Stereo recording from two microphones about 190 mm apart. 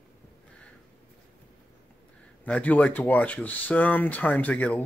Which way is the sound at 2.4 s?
10° left (ahead or behind).